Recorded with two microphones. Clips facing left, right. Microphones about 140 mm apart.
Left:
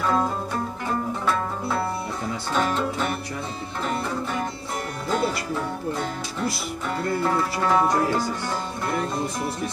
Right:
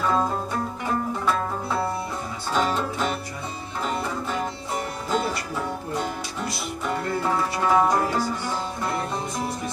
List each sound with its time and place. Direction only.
7.2 s music: 10° right (ahead or behind)